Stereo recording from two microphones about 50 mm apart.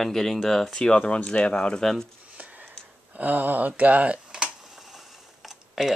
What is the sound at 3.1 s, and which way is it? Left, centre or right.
Speech, right.